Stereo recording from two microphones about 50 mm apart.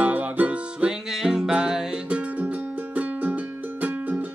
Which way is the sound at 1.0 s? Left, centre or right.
Centre.